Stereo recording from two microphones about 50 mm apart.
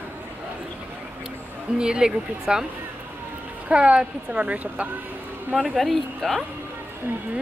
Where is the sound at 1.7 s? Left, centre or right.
Centre.